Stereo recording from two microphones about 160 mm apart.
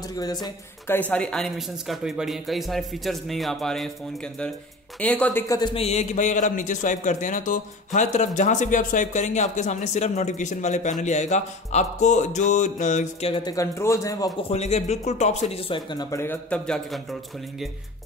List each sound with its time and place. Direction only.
0.1 s speech: 25° left (ahead or behind)
0.9 s speech: 10° left (ahead or behind)
5.5 s speech: 30° left (ahead or behind)
5.9 s a man's voice: 45° left (ahead or behind)
13.4 s speech: 20° left (ahead or behind)
14.5 s a man's voice: 45° left (ahead or behind)
15.5 s speech: 30° left (ahead or behind); by 17.6 s centre (ahead or behind)